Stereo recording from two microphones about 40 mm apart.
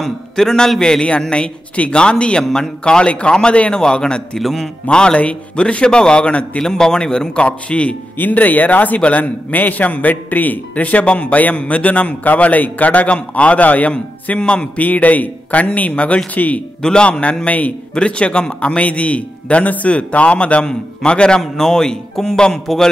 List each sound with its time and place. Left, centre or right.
0.0 s a man's voice: centre; by 3.7 s left
3.7 s a man's voice: centre
4.4 s a man's voice: centre
4.8 s a man's voice: left
6.6 s a man's voice: centre; by 7.9 s left
8.2 s a man's voice: left
14.4 s a man's voice: left
14.8 s a man's voice: left
16.8 s a man's voice: left
18.8 s a man's voice: left
21.4 s a man's voice: centre